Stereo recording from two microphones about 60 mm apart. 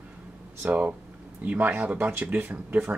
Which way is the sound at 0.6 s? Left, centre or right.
Right.